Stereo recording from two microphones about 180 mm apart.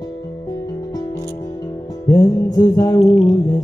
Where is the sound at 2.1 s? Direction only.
20° left (ahead or behind).